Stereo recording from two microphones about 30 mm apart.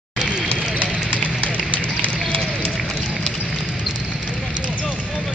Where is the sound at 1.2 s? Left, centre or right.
Left.